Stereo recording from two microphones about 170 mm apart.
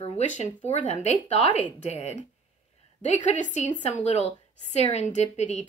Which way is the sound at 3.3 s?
45° left (ahead or behind).